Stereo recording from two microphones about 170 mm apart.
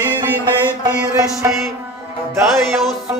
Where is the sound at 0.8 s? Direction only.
20° right (ahead or behind).